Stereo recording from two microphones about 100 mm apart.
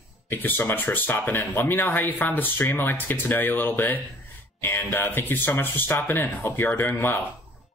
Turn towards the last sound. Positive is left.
turn(degrees=20)  # may be behind; listen again after turning